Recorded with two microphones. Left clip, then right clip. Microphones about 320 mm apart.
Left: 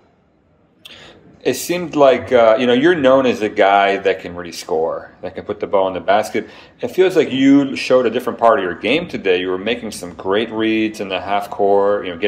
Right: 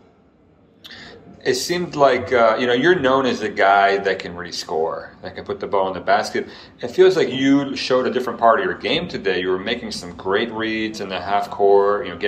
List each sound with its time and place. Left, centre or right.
1.9 s speech: left